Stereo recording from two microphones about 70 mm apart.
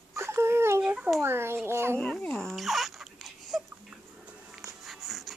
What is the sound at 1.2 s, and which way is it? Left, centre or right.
Speech, right.